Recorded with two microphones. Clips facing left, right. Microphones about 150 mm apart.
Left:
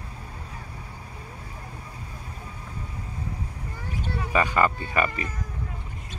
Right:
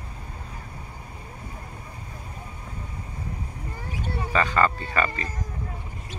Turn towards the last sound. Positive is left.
turn(degrees=15)  # may be behind; listen again after turning